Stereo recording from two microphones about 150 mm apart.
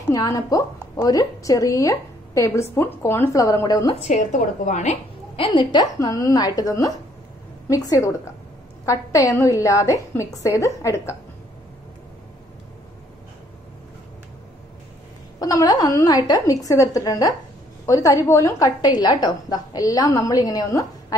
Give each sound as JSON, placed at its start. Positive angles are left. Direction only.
{"t": 0.1, "sound": "a woman's voice", "side_deg": 25}
{"t": 4.1, "sound": "a woman's voice", "side_deg": 55}
{"t": 5.3, "sound": "a woman's voice", "side_deg": 35}
{"t": 15.3, "sound": "a woman's voice", "side_deg": 25}